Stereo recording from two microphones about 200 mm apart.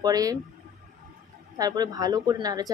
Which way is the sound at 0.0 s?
20° right (ahead or behind).